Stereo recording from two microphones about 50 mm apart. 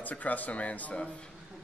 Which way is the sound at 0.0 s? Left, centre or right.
Left.